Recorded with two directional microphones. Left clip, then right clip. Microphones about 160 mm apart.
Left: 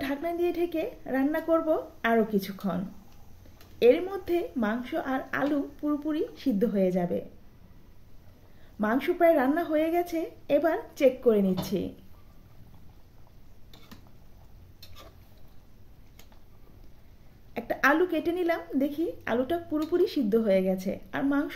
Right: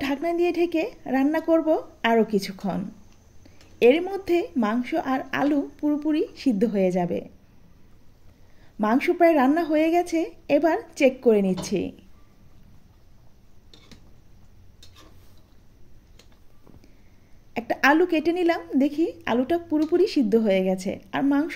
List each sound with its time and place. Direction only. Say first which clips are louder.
0.0 s a woman's voice: right 5 dB; 40° right (ahead or behind)
3.8 s a woman's voice: right 3 dB; 40° right (ahead or behind)
8.7 s a woman's voice: right 5 dB; 35° right (ahead or behind)
17.6 s a woman's voice: right 4 dB; 35° right (ahead or behind)